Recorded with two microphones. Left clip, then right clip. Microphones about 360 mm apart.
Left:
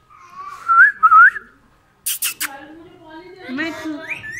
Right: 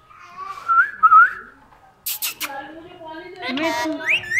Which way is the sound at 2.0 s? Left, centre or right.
Centre.